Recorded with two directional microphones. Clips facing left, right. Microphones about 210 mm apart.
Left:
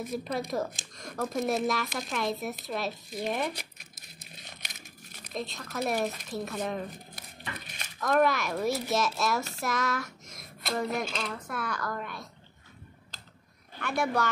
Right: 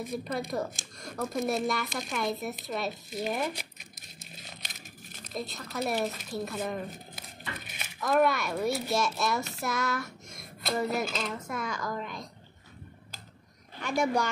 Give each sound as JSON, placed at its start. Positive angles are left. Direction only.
{"t": 0.0, "sound": "speech", "side_deg": 0}
{"t": 9.6, "sound": "a sound", "side_deg": 0}
{"t": 11.4, "sound": "speech", "side_deg": -10}
{"t": 13.7, "sound": "speech", "side_deg": -15}